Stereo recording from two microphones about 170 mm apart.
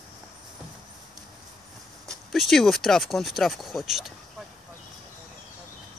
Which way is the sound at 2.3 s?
Centre (ahead or behind).